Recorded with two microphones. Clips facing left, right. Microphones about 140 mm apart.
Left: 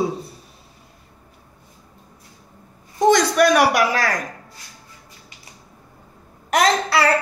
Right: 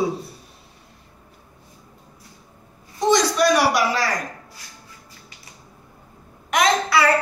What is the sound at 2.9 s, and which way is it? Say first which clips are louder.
A man's voice: left 3 dB; 55° left (ahead or behind).